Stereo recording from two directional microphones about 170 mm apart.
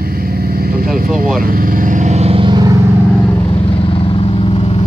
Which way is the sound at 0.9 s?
55° right (ahead or behind).